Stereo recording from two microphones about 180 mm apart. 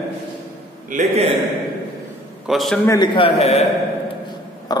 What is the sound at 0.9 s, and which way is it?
Speech, 45° right (ahead or behind).